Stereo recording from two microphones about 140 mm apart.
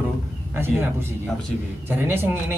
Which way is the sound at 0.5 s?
15° right (ahead or behind).